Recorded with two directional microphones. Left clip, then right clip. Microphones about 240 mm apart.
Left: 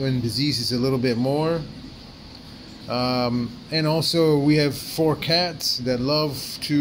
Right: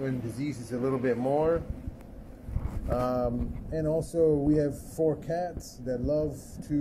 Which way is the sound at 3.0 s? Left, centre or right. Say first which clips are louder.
Left 5 dB; left.